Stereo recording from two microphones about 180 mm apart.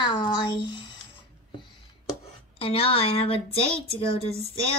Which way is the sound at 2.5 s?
30° left (ahead or behind).